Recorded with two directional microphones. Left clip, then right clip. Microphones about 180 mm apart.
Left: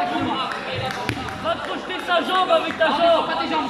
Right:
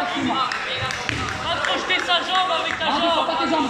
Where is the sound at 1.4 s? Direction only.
70° left (ahead or behind).